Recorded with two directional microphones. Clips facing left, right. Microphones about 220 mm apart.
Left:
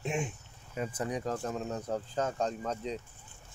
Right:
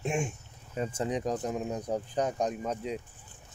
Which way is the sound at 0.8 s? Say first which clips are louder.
Right 3 dB; 25° right (ahead or behind).